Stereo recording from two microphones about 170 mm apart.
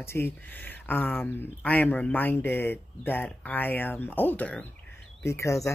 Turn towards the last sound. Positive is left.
turn(degrees=15)  # may be behind; listen again after turning